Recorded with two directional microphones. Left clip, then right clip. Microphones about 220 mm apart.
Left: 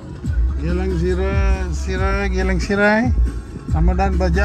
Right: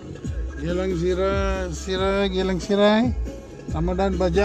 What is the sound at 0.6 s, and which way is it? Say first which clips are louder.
Music: left 1 dB; 20° right (ahead or behind).